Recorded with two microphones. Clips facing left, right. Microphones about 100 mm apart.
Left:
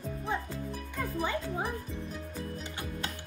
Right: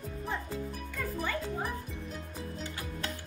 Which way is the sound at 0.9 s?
20° left (ahead or behind).